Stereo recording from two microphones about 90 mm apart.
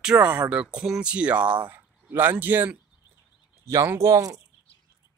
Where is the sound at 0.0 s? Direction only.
10° right (ahead or behind); by 4.4 s 40° right (ahead or behind).